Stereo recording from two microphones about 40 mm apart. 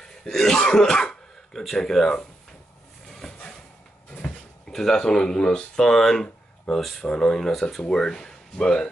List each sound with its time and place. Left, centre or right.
0.0 s throat clearing: centre
1.8 s speech: centre
3.1 s a sound: centre
4.6 s speech: centre
7.0 s speech: centre